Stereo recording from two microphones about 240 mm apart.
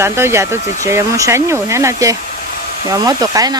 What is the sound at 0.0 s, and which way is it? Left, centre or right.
Speech, centre.